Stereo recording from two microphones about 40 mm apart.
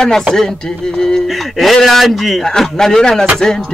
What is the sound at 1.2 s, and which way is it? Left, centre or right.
Speech, centre.